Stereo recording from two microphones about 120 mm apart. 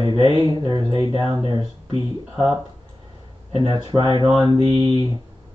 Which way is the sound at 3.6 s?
40° right (ahead or behind).